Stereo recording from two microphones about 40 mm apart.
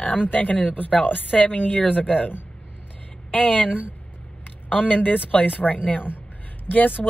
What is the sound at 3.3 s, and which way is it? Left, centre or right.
Speech, left.